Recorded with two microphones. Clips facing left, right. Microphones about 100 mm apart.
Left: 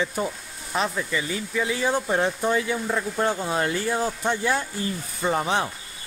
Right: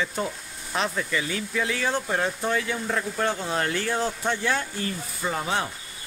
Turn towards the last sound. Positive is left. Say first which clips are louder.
# left 4 dB
turn(degrees=20)  # may be behind; listen again after turning